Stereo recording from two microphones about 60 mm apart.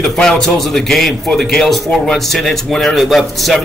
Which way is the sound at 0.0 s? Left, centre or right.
Centre.